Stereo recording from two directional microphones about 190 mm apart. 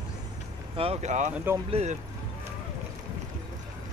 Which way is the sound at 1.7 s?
35° right (ahead or behind).